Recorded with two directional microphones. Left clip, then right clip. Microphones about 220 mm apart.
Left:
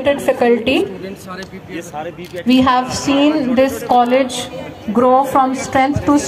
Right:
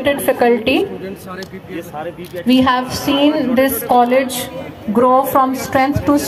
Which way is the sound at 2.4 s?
35° right (ahead or behind).